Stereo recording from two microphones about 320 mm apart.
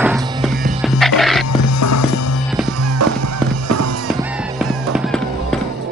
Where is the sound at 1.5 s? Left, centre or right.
Left.